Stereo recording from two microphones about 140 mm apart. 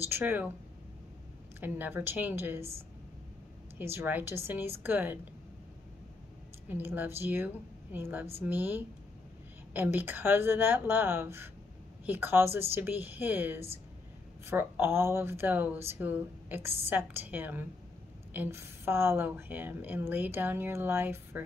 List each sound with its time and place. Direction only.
0.0 s speech: 15° right (ahead or behind)
1.6 s speech: 15° right (ahead or behind)
3.7 s speech: 15° right (ahead or behind)
6.7 s speech: 15° right (ahead or behind)